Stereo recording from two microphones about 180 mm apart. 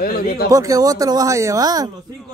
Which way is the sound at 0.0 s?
55° left (ahead or behind).